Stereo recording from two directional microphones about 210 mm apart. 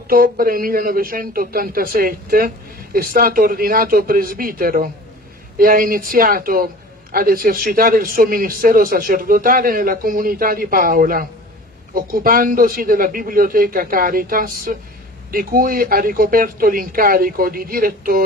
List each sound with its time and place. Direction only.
0.1 s a man's voice: 45° right (ahead or behind)